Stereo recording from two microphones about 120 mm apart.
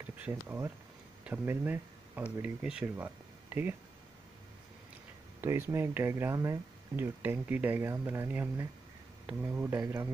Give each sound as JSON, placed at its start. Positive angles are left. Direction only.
{"t": 0.0, "sound": "speech", "side_deg": -15}
{"t": 3.0, "sound": "a sound", "side_deg": -20}
{"t": 5.4, "sound": "speech", "side_deg": -20}
{"t": 7.0, "sound": "speech", "side_deg": -15}